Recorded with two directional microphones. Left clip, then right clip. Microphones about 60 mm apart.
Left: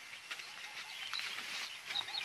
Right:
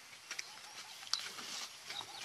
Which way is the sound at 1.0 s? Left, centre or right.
Centre.